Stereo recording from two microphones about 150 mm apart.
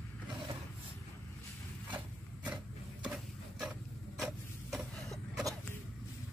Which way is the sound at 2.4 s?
5° right (ahead or behind).